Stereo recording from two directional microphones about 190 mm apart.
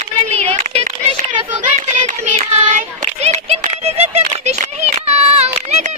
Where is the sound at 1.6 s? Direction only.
40° right (ahead or behind).